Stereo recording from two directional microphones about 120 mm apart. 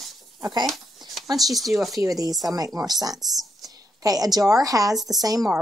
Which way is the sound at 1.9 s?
30° right (ahead or behind).